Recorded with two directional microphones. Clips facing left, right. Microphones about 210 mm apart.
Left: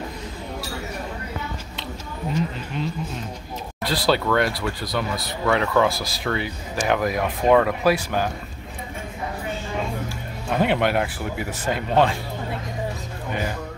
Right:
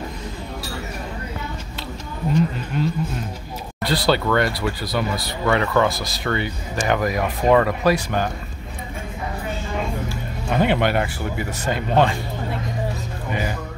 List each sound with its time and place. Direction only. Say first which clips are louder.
2.3 s speech: right 5 dB; centre (ahead or behind)
10.5 s speech: right 1 dB; centre (ahead or behind)
13.3 s speech: right 1 dB; 5° right (ahead or behind)